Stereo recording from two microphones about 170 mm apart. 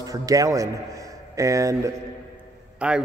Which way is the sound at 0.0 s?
20° right (ahead or behind).